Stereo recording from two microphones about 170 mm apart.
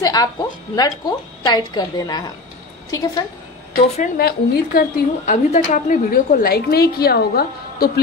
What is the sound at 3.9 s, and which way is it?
A woman's voice, 55° left (ahead or behind).